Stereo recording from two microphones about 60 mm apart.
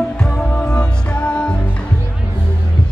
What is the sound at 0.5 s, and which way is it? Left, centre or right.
Music, centre.